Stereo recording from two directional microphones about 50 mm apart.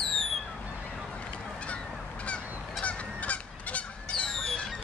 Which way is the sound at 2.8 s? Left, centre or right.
Left.